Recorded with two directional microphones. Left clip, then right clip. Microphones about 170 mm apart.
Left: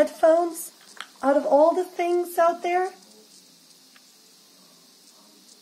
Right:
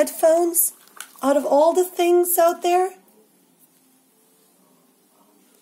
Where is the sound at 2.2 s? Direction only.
50° right (ahead or behind).